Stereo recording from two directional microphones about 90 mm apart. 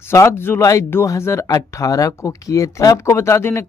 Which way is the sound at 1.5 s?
40° left (ahead or behind).